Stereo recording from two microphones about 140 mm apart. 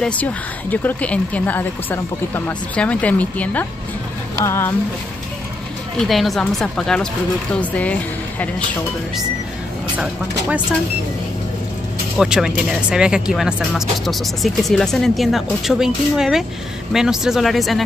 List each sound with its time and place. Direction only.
0.0 s a woman's voice: 10° left (ahead or behind)
5.9 s speech: centre (ahead or behind)
12.2 s speech: 5° right (ahead or behind)